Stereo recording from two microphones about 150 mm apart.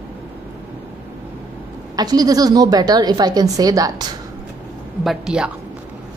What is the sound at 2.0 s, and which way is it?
A woman's voice, 25° right (ahead or behind).